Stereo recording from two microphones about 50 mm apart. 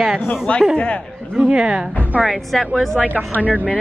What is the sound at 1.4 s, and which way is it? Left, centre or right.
Speech, centre.